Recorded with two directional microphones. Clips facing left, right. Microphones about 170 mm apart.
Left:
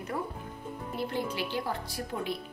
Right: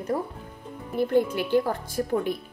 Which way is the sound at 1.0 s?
55° right (ahead or behind).